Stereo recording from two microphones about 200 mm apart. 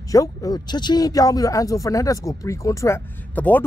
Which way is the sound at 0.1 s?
15° left (ahead or behind).